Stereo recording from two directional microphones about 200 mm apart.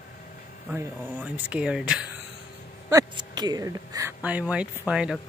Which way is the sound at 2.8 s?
20° right (ahead or behind).